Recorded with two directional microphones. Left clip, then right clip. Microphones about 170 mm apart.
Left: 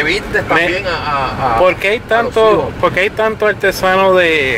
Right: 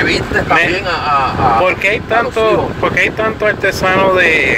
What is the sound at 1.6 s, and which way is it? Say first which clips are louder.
Speech: left 1 dB; 35° left (ahead or behind).